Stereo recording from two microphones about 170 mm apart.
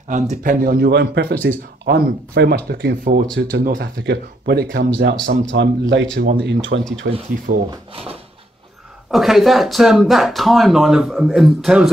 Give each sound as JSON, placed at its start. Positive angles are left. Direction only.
{"t": 0.1, "sound": "a man's voice", "side_deg": -50}
{"t": 7.0, "sound": "speech", "side_deg": -65}
{"t": 7.5, "sound": "speech", "side_deg": -55}
{"t": 7.9, "sound": "drawer open or close", "side_deg": -35}
{"t": 9.1, "sound": "speech", "side_deg": 0}